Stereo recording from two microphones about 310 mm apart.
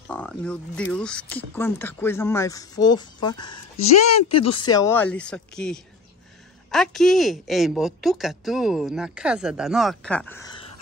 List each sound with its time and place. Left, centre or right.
0.1 s speech: centre
3.9 s speech: left
4.6 s a woman's voice: centre